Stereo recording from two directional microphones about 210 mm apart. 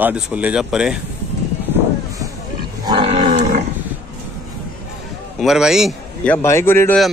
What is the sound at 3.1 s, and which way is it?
Cattle, 40° right (ahead or behind).